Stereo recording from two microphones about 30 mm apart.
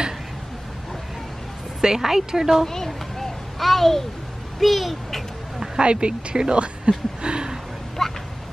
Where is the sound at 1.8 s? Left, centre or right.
Centre.